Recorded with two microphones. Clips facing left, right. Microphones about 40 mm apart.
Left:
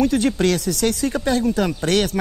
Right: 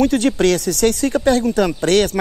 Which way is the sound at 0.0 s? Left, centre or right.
Right.